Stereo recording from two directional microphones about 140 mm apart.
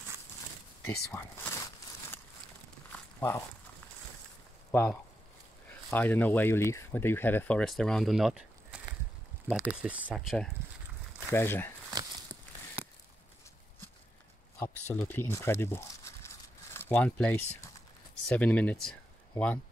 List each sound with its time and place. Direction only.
0.8 s speech: 15° left (ahead or behind)
2.9 s walk: 15° left (ahead or behind)
4.6 s speech: 15° left (ahead or behind); by 10.1 s 10° right (ahead or behind)
10.1 s speech: centre (ahead or behind)
11.2 s speech: 15° left (ahead or behind)
14.6 s speech: 15° left (ahead or behind)